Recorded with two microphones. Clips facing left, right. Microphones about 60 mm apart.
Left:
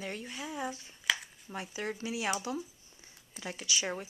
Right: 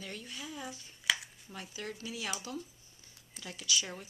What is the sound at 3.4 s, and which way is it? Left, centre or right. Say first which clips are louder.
Speech: left 2 dB; left.